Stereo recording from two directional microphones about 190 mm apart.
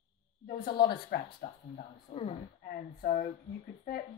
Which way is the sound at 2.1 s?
45° left (ahead or behind).